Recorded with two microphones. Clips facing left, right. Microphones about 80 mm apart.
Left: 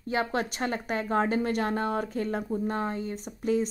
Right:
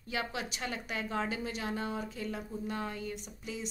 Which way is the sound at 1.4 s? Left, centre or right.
Left.